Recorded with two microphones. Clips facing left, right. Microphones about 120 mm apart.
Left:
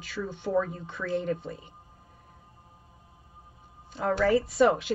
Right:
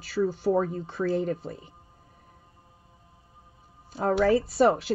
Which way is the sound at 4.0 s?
35° right (ahead or behind).